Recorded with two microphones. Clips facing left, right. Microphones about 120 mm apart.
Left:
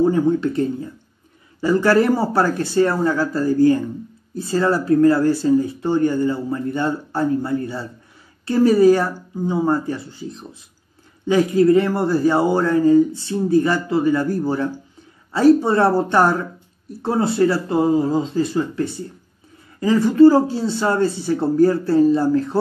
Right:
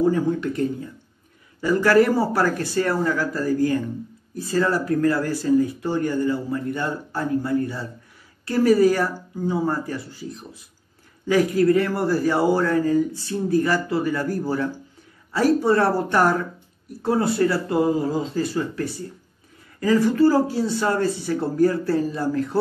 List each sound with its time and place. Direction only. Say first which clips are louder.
0.0 s speech: left 4 dB; 30° left (ahead or behind)